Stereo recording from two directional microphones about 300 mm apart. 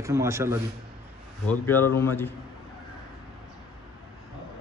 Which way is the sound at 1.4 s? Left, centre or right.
Centre.